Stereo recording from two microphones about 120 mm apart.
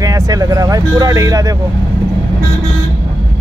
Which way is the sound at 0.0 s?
30° right (ahead or behind).